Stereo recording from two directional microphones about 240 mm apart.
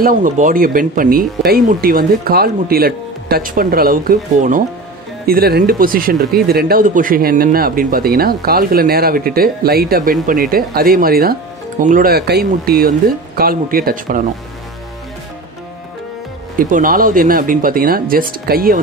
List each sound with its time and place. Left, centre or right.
0.0 s speech: right
16.5 s speech: right